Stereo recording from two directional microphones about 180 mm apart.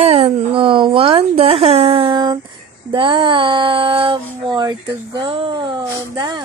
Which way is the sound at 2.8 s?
25° right (ahead or behind).